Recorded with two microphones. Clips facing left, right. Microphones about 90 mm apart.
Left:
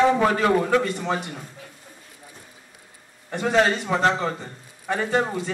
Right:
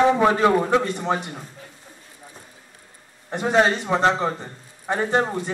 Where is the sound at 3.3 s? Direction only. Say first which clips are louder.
Right 1 dB; 20° right (ahead or behind).